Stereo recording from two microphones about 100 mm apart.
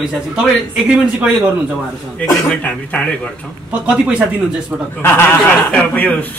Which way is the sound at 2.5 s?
10° left (ahead or behind).